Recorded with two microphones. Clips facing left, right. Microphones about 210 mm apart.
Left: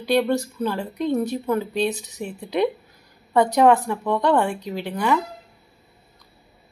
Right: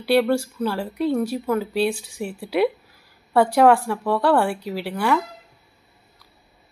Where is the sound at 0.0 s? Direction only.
10° right (ahead or behind).